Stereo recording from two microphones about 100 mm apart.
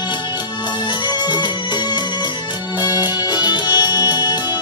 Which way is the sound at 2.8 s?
40° left (ahead or behind).